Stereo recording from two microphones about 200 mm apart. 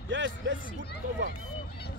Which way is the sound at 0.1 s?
65° right (ahead or behind).